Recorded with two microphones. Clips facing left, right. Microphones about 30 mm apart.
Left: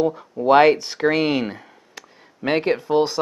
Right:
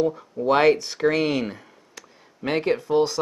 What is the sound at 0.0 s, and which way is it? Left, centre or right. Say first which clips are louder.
Speech: left 2 dB; centre.